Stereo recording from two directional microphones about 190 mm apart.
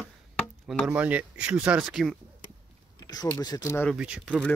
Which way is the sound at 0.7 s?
5° right (ahead or behind).